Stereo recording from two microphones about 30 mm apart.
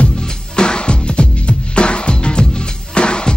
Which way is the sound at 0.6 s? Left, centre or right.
Left.